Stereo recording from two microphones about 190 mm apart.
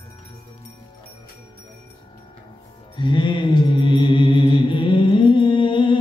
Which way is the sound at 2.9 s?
25° left (ahead or behind).